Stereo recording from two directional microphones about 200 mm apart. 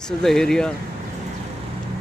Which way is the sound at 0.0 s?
Centre (ahead or behind).